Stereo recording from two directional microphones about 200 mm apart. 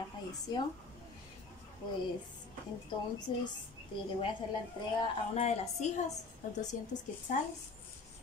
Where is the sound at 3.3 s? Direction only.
25° left (ahead or behind).